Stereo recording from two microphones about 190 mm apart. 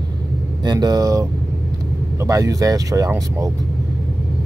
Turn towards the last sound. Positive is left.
turn(degrees=-15)  # may be behind; listen again after turning